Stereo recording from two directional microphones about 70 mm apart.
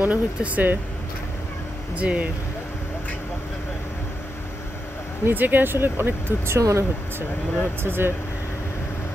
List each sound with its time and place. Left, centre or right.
0.0 s speech: right
2.0 s speech: centre
5.2 s speech: right